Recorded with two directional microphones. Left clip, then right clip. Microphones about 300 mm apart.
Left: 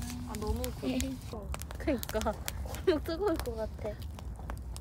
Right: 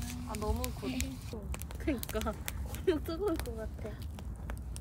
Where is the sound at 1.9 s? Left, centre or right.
Left.